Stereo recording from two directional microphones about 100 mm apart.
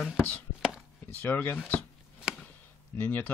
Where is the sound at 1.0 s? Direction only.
20° left (ahead or behind).